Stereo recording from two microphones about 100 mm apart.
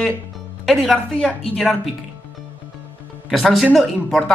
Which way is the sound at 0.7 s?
Centre (ahead or behind).